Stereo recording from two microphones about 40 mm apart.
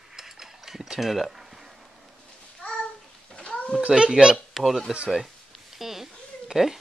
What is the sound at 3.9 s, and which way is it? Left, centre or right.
Speech, centre.